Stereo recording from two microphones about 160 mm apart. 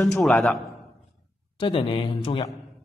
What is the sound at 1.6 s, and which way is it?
Speech, 30° left (ahead or behind).